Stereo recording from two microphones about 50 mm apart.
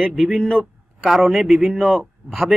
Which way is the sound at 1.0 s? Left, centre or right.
Centre.